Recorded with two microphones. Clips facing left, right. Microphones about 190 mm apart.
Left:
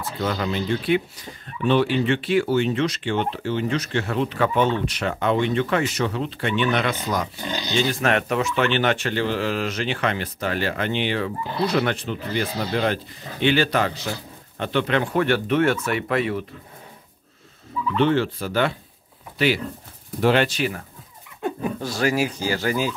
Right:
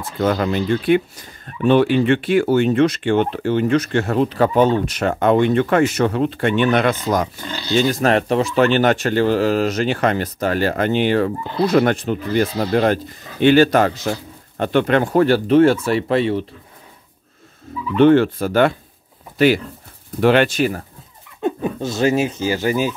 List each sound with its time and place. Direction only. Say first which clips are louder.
0.2 s speech: right 7 dB; 50° right (ahead or behind)
7.4 s speech: left 1 dB; 15° left (ahead or behind)
7.9 s speech: right 5 dB; 35° right (ahead or behind)
17.9 s speech: right 8 dB; 55° right (ahead or behind)
20.2 s speech: right 5 dB; 60° right (ahead or behind); by 20.8 s 45° right (ahead or behind)
21.4 s speech: right 5 dB; 20° right (ahead or behind)